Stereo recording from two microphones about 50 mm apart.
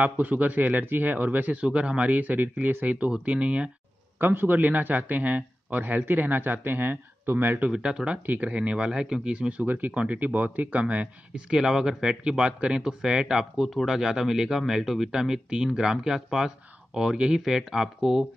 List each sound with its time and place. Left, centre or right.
0.0 s speech: right
4.2 s speech: right
7.7 s speech: centre
9.7 s speech: right
11.5 s speech: centre